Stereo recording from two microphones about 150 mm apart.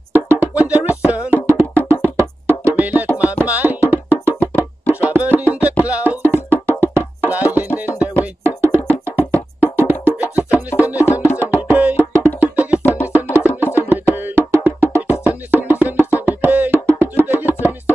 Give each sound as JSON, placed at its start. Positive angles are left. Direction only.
{"t": 0.1, "sound": "music", "side_deg": -15}
{"t": 11.1, "sound": "music", "side_deg": 15}
{"t": 11.3, "sound": "music", "side_deg": -15}
{"t": 12.8, "sound": "music", "side_deg": 10}
{"t": 13.1, "sound": "music", "side_deg": -15}